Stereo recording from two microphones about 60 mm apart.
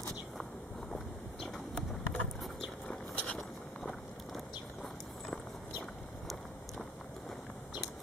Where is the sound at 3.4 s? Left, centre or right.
Centre.